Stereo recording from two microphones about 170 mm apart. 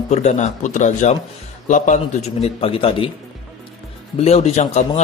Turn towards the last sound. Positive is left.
turn(degrees=40)  # may be behind; listen again after turning